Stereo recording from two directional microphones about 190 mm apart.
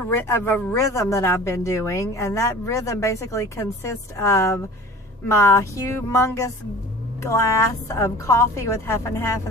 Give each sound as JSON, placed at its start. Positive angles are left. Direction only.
{"t": 0.1, "sound": "speech", "side_deg": 10}